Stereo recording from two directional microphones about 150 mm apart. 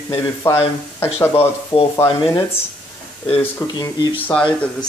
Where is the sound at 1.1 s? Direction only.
40° left (ahead or behind).